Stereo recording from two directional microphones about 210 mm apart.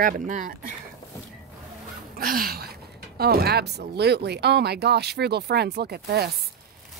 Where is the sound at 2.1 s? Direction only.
45° right (ahead or behind).